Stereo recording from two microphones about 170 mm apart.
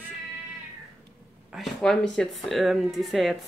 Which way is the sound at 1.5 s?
Centre (ahead or behind).